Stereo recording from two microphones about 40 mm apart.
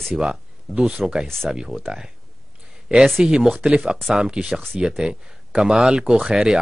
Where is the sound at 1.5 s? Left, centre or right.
Centre.